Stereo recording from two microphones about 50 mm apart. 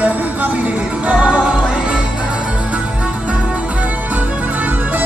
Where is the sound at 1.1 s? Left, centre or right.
Centre.